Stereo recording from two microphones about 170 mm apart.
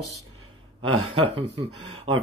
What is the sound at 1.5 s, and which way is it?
Speech, 30° right (ahead or behind).